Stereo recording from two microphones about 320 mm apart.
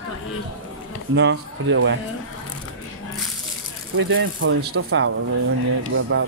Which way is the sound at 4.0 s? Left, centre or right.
Right.